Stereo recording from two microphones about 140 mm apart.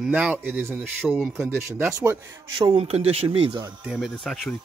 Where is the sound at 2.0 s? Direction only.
30° right (ahead or behind).